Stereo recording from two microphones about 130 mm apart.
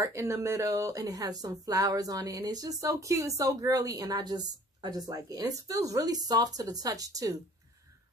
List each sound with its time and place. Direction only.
0.0 s speech: 20° right (ahead or behind)